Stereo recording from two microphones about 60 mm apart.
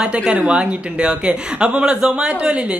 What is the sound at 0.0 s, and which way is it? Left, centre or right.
A woman's voice, centre.